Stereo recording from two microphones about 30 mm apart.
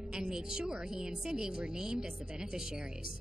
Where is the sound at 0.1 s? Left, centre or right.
Right.